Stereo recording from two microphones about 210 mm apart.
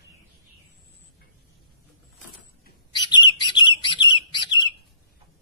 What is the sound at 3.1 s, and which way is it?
Bird, 20° left (ahead or behind).